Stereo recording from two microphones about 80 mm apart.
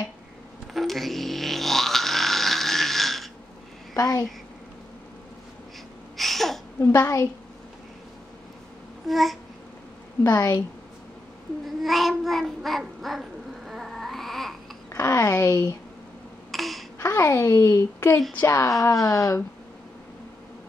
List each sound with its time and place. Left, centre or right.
0.7 s grunt: centre
3.9 s a child's voice: left
6.1 s a sound: centre
6.8 s a child's voice: left
9.0 s babbling: centre
10.3 s a child's voice: left
11.8 s babbling: centre
14.9 s speech: left
16.5 s babbling: centre
17.0 s a child's voice: left